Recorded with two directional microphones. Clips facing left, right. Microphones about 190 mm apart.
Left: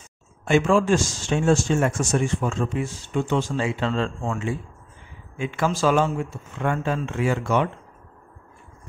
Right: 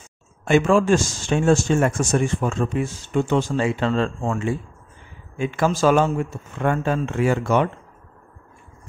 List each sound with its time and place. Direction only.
0.5 s speech: 55° right (ahead or behind)